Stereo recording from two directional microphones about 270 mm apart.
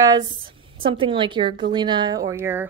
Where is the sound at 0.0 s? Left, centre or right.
Centre.